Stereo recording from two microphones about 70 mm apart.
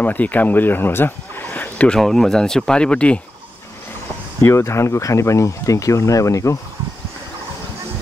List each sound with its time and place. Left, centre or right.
0.0 s speech: left
1.9 s speech: centre
4.4 s speech: left